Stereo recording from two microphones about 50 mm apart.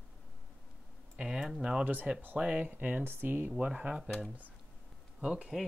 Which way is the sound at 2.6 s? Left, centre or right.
Right.